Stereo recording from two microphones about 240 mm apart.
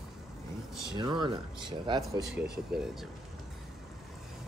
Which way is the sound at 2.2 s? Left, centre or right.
Centre.